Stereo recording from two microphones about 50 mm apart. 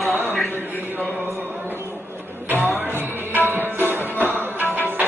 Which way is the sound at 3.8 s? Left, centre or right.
Right.